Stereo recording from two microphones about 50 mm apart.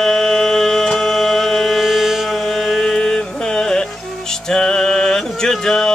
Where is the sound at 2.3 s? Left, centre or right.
Centre.